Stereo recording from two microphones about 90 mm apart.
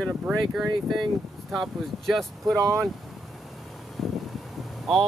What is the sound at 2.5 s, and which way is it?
Speech, 35° right (ahead or behind).